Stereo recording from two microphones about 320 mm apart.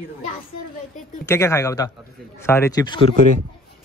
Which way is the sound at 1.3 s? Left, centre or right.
Centre.